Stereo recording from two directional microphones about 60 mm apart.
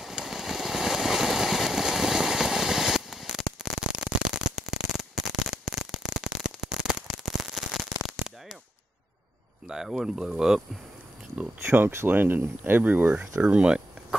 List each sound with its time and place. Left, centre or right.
0.0 s vehicle: centre
9.7 s speech: centre
11.6 s speech: right
13.4 s speech: centre